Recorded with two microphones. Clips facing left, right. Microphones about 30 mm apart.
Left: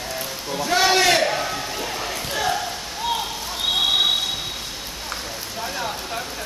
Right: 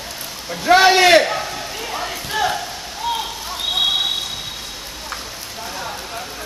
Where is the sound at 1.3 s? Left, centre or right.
Centre.